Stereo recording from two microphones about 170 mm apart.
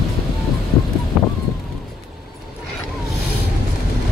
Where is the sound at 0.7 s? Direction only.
15° left (ahead or behind).